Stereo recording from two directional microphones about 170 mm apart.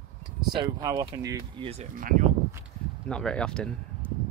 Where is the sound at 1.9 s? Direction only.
50° right (ahead or behind).